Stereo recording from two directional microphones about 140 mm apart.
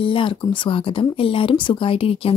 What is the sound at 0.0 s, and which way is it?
Speech, 40° left (ahead or behind).